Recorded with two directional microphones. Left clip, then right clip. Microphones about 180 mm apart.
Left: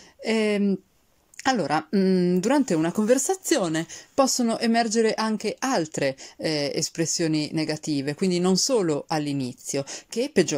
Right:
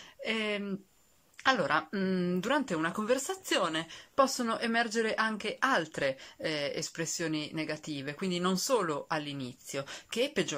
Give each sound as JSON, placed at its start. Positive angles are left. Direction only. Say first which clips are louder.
{"t": 0.2, "sound": "speech", "louder": "left 9 dB", "side_deg": 35}